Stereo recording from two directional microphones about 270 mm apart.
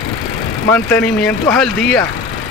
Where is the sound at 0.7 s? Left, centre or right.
Centre.